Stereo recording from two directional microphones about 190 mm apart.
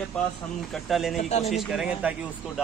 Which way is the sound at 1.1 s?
35° left (ahead or behind).